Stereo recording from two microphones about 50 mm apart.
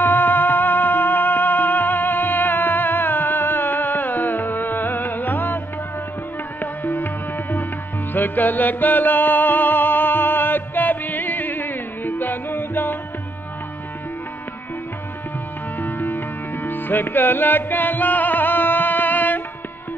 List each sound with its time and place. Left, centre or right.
0.0 s music: left
6.6 s music: left
15.8 s music: left